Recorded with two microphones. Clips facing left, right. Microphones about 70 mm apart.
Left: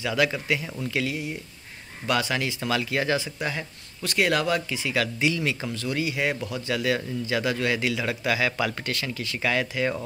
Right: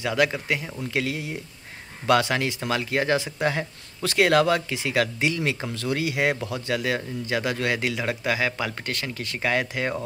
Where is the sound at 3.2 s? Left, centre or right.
Right.